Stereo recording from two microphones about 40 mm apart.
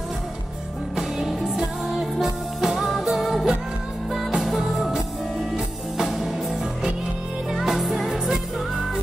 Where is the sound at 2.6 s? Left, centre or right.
Centre.